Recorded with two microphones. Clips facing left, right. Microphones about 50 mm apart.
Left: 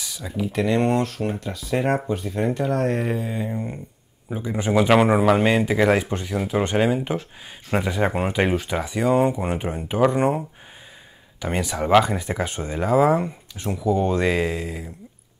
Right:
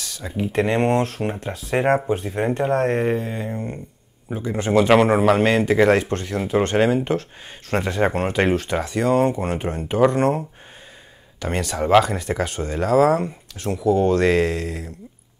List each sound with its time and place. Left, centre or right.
0.5 s speech: right
3.1 s mantra: centre
3.3 s a man's voice: centre